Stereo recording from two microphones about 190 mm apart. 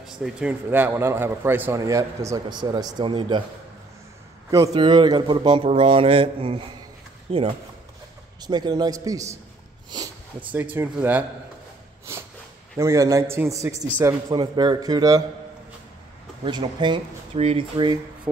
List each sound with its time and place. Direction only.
0.0 s a man's voice: 5° right (ahead or behind); by 3.4 s 25° right (ahead or behind)
4.5 s a man's voice: 20° right (ahead or behind)
10.5 s a man's voice: 10° right (ahead or behind)
12.7 s a man's voice: 15° right (ahead or behind)
16.4 s a man's voice: 25° right (ahead or behind)